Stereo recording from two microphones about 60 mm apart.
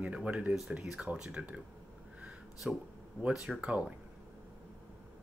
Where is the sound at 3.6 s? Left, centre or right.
Centre.